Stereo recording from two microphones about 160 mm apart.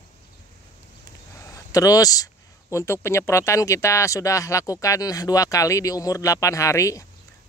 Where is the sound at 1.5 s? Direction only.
20° left (ahead or behind).